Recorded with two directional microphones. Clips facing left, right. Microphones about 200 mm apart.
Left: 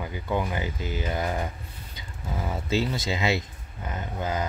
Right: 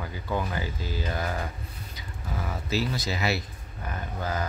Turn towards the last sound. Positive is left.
turn(degrees=20)  # may be behind; listen again after turning